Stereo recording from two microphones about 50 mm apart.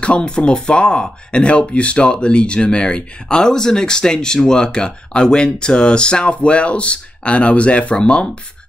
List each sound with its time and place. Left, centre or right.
0.0 s speech: centre